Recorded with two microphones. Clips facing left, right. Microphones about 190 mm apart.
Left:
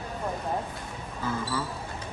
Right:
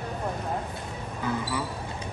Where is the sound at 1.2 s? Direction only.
15° right (ahead or behind).